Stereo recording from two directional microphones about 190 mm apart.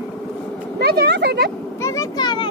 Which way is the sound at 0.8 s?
55° right (ahead or behind).